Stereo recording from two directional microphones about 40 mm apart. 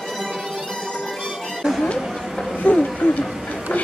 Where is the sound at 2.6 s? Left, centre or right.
Left.